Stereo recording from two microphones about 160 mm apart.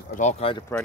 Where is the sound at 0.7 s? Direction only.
15° left (ahead or behind).